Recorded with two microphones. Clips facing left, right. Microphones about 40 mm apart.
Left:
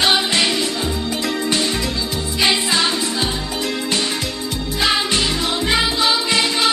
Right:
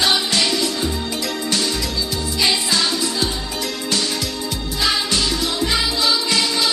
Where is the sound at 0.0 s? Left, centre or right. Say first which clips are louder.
Left 2 dB; left.